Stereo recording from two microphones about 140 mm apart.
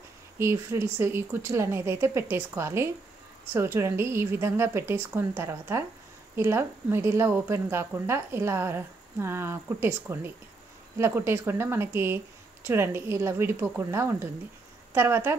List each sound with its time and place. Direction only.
0.4 s speech: 20° right (ahead or behind)